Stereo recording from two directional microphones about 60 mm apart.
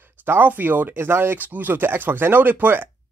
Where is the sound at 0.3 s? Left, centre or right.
Right.